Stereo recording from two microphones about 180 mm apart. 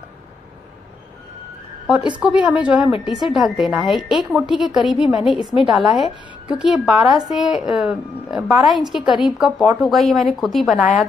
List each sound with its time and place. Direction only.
1.9 s a woman's voice: 5° right (ahead or behind)